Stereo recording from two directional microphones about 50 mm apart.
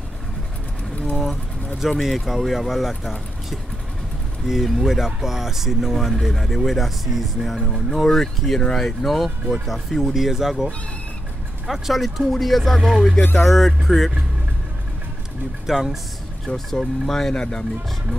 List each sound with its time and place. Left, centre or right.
1.1 s vehicle: centre
2.0 s speech: centre
4.5 s speech: centre
13.2 s speech: left
13.5 s speech: centre
15.6 s speech: centre
16.4 s speech: centre